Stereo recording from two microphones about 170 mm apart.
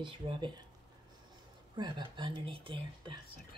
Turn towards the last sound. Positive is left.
turn(degrees=-30)  # may be behind; listen again after turning